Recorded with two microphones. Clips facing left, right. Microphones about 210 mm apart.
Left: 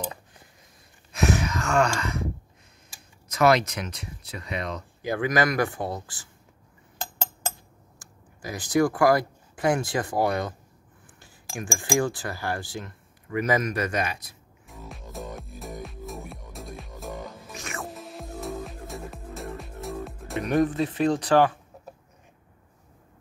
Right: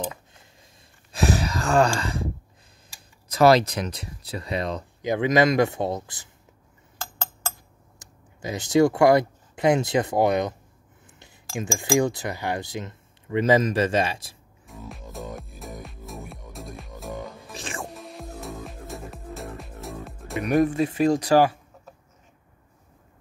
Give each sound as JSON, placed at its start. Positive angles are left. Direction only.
{"t": 1.1, "sound": "gasp", "side_deg": -35}
{"t": 3.3, "sound": "speech", "side_deg": -35}
{"t": 5.0, "sound": "speech", "side_deg": -20}
{"t": 7.0, "sound": "a sound", "side_deg": 15}
{"t": 8.0, "sound": "speech", "side_deg": -20}
{"t": 14.7, "sound": "music", "side_deg": 0}
{"t": 17.5, "sound": "music", "side_deg": -30}
{"t": 17.8, "sound": "music", "side_deg": 0}
{"t": 20.4, "sound": "speech", "side_deg": -10}